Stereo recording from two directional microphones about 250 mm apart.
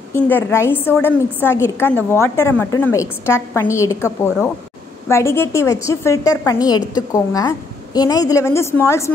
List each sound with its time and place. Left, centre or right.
0.1 s a woman's voice: centre